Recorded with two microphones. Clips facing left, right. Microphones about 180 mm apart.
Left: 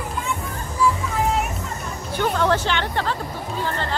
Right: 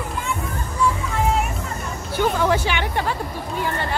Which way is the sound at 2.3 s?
10° right (ahead or behind).